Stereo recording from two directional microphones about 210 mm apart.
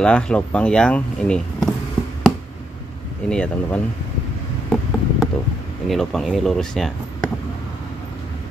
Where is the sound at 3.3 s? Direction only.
5° left (ahead or behind).